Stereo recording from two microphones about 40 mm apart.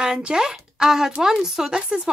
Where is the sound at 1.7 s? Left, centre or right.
Right.